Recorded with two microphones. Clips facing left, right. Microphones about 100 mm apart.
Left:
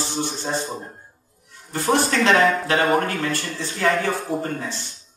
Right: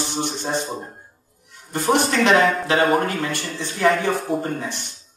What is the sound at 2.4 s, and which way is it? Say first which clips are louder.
Speech: right 1 dB; centre (ahead or behind).